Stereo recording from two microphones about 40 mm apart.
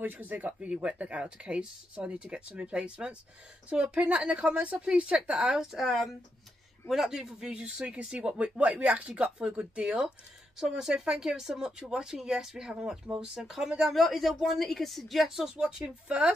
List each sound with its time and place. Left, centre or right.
0.0 s speech: right
5.6 s speech: centre; by 10.0 s right
10.6 s speech: centre
15.5 s speech: right